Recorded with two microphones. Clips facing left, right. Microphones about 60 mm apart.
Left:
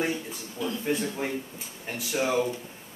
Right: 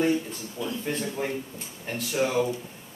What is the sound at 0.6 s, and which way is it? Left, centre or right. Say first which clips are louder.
Speech: left 1 dB; left.